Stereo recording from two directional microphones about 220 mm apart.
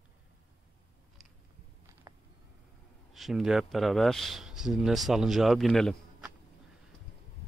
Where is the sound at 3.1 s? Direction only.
Centre (ahead or behind).